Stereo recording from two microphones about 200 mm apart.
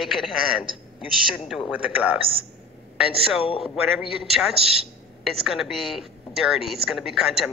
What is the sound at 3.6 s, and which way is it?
A woman's voice, centre (ahead or behind).